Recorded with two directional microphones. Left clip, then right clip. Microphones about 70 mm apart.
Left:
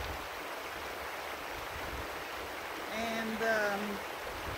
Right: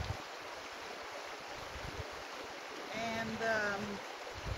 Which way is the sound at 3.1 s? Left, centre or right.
Centre.